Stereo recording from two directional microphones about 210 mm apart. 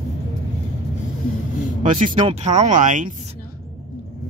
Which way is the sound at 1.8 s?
35° right (ahead or behind).